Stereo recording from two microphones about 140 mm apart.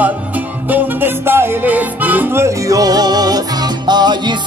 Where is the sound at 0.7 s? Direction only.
15° right (ahead or behind).